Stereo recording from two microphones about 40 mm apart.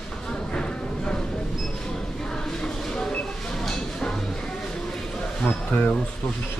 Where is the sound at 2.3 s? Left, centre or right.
Centre.